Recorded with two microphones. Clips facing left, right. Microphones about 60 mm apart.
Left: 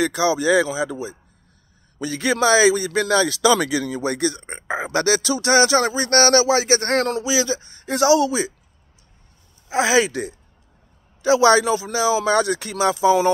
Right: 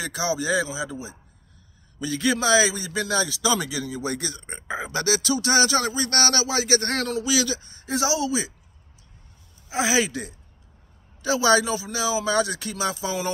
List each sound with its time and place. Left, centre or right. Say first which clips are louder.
0.0 s a man's voice: left 7 dB; left
2.0 s a man's voice: left 3 dB; left
7.2 s speech: left 3 dB; left
7.6 s a man's voice: left 7 dB; left
9.7 s speech: left 5 dB; left